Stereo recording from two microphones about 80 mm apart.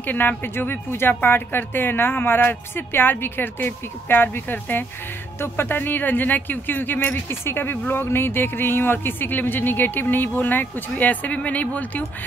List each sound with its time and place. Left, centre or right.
0.0 s speech: left